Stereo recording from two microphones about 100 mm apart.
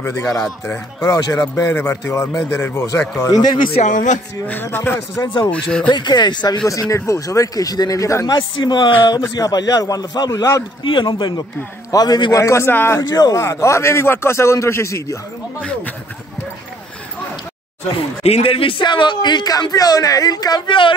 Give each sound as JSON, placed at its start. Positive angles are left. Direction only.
{"t": 0.7, "sound": "speech", "side_deg": 25}
{"t": 4.6, "sound": "speech", "side_deg": 25}
{"t": 5.2, "sound": "speech", "side_deg": 55}
{"t": 5.5, "sound": "speech", "side_deg": 10}
{"t": 5.9, "sound": "speech", "side_deg": 50}
{"t": 6.7, "sound": "speech", "side_deg": 35}
{"t": 8.6, "sound": "speech", "side_deg": 50}
{"t": 10.8, "sound": "speech", "side_deg": 55}
{"t": 13.0, "sound": "speech", "side_deg": 40}
{"t": 13.4, "sound": "speech", "side_deg": 25}
{"t": 15.6, "sound": "speech", "side_deg": 10}
{"t": 17.8, "sound": "speech", "side_deg": 75}